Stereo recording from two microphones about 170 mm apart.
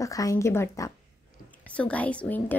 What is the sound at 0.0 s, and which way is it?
A woman's voice, 20° left (ahead or behind).